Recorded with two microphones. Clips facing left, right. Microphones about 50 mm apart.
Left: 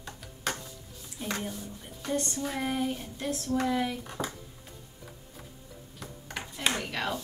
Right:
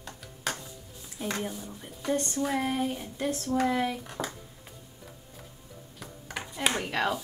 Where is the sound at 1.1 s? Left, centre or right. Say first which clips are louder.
Right 2 dB; centre.